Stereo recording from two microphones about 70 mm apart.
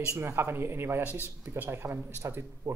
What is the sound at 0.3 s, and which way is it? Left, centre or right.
Speech, right.